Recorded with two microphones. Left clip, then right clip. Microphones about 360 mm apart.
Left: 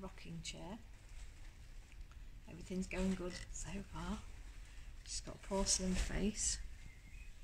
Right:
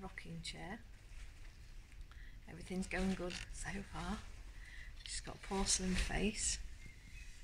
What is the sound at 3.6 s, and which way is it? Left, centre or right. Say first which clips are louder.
Speech: right 3 dB; centre.